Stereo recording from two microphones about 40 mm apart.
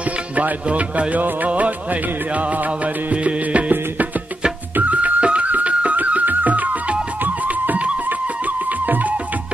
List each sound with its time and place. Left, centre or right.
0.7 s music: right
4.7 s music: right